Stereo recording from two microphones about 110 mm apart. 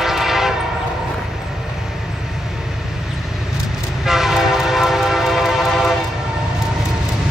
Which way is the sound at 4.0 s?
5° right (ahead or behind).